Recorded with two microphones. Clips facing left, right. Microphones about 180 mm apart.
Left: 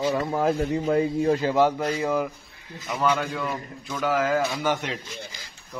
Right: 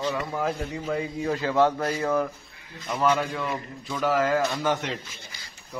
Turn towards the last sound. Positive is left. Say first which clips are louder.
# even
turn(degrees=0)  # may be behind; listen again after turning